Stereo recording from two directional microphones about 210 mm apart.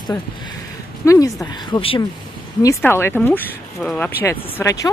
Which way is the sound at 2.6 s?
15° left (ahead or behind).